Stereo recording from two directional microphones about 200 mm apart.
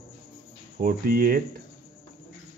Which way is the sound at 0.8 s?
45° right (ahead or behind).